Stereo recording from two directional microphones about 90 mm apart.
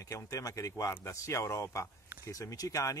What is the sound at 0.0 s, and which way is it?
Speech, 35° left (ahead or behind).